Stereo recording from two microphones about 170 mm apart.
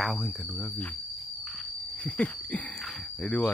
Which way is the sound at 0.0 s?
Centre (ahead or behind).